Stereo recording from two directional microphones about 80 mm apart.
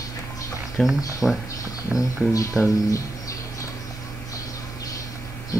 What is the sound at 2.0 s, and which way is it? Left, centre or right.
Speech, left.